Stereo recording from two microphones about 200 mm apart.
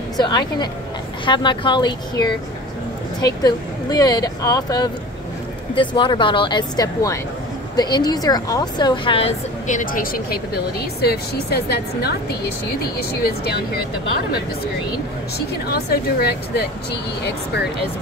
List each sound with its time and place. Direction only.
0.2 s speech: 20° left (ahead or behind)
9.7 s speech: 40° left (ahead or behind)
15.3 s speech: 55° left (ahead or behind)